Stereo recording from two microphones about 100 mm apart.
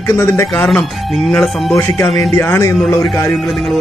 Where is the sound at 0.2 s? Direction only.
25° left (ahead or behind).